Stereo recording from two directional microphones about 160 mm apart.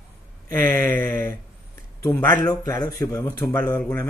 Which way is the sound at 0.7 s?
15° left (ahead or behind).